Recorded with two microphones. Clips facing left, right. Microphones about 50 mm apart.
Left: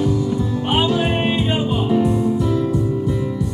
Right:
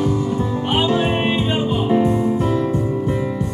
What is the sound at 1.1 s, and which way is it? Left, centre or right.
Music, centre.